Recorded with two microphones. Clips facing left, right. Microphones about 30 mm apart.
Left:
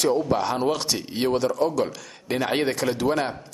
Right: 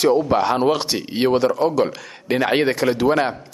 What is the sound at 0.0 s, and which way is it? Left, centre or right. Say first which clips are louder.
Speech: right 5 dB; right.